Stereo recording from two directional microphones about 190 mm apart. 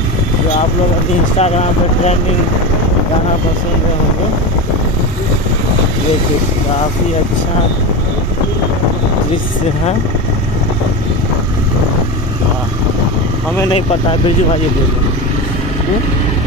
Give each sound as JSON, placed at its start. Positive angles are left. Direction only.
{"t": 1.4, "sound": "speech", "side_deg": 35}